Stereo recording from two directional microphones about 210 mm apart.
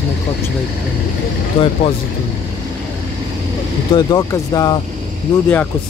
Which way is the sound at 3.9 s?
15° left (ahead or behind).